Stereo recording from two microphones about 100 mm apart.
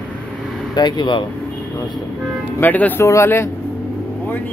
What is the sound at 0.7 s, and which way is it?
Speech, 45° left (ahead or behind).